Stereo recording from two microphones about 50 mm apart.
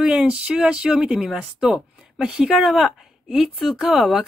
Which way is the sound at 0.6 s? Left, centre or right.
Centre.